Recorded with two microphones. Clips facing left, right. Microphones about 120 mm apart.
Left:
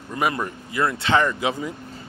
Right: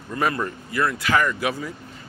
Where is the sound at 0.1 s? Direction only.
15° left (ahead or behind).